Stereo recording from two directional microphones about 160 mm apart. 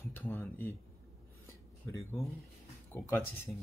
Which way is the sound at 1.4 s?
20° left (ahead or behind).